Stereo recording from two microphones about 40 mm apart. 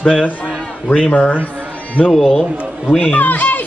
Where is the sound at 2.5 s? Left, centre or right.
Right.